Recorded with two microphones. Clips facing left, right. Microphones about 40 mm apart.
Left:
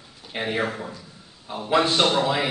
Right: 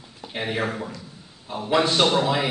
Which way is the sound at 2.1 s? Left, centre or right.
Left.